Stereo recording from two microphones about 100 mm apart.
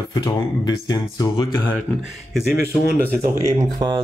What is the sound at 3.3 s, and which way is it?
Speech, 30° right (ahead or behind).